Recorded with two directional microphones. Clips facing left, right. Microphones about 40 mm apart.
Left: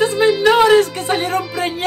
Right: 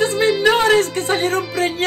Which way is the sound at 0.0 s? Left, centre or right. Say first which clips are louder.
Left 2 dB; left.